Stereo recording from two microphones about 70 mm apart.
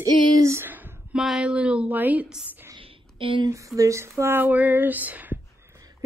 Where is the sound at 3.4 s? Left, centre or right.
Right.